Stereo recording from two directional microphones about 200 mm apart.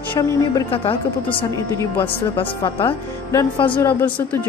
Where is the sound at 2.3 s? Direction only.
25° left (ahead or behind).